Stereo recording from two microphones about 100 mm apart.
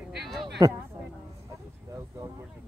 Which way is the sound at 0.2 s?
Centre (ahead or behind).